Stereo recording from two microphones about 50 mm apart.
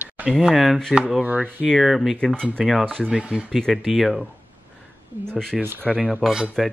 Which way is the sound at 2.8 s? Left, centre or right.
Centre.